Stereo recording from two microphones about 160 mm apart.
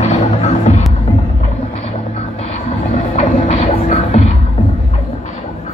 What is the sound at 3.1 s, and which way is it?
Music, 45° left (ahead or behind).